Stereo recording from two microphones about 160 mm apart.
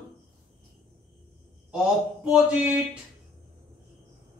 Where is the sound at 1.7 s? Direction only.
5° right (ahead or behind).